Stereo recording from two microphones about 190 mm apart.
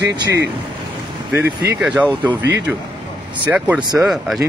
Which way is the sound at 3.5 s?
10° right (ahead or behind).